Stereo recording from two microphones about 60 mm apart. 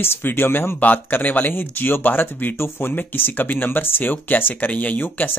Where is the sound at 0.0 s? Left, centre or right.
Left.